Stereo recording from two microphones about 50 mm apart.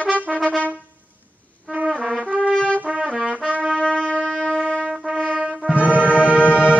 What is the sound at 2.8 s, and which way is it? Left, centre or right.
Brass instrument, right.